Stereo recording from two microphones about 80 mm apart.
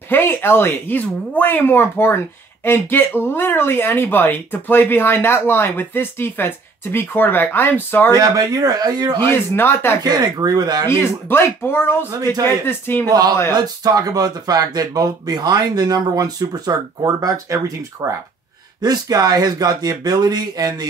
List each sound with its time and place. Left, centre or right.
0.1 s speech: left
8.2 s speech: right
9.6 s speech: left
10.0 s speech: right
10.9 s speech: left
13.5 s speech: right
18.8 s speech: right